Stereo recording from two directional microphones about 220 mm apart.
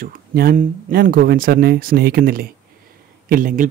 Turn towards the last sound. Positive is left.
turn(degrees=-35)  # may be behind; listen again after turning